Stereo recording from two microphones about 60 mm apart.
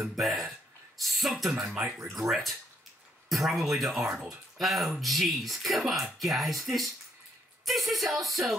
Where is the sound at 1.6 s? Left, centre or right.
Right.